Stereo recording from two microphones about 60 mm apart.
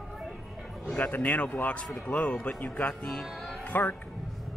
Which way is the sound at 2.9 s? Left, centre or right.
Centre.